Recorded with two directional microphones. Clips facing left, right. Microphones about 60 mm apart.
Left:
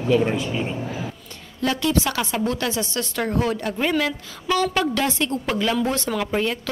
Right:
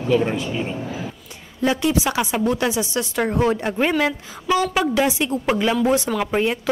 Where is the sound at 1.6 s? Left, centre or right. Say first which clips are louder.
Right 2 dB; centre.